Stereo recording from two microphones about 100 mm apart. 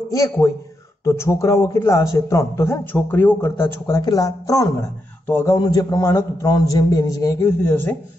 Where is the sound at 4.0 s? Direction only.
35° left (ahead or behind).